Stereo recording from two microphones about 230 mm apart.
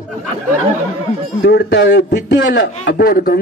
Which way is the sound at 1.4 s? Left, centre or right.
Left.